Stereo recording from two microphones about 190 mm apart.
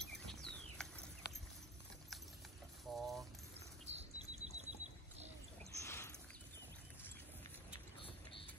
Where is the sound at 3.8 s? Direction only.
35° right (ahead or behind).